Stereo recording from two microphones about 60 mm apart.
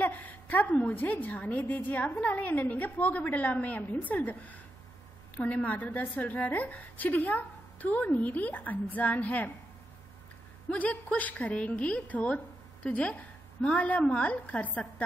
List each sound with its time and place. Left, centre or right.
0.0 s a sound: left
0.8 s a woman's voice: left
10.7 s a woman's voice: left